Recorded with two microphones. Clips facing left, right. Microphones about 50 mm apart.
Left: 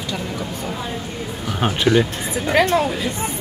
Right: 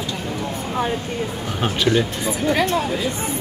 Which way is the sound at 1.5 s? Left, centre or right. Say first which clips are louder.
Left 3 dB; centre.